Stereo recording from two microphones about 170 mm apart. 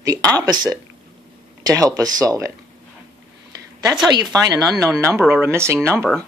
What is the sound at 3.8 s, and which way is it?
Speech, 20° right (ahead or behind).